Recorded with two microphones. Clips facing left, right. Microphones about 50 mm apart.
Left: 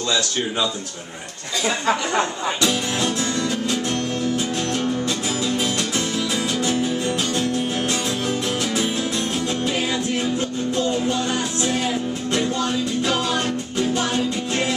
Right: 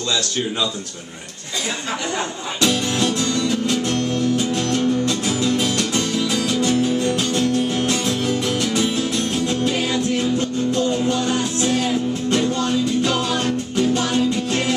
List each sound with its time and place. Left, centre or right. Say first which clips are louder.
2.6 s music: right 4 dB; centre